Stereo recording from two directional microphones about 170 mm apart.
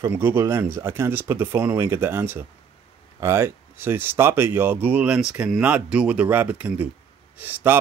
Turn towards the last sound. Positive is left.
turn(degrees=-10)  # may be behind; listen again after turning